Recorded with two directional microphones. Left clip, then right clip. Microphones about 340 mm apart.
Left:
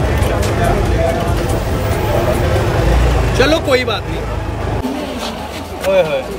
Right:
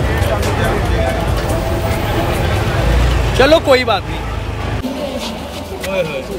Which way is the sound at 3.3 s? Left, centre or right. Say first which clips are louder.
Right 4 dB; centre.